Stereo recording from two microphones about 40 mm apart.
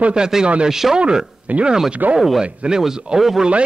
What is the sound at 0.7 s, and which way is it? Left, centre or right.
Speech, centre.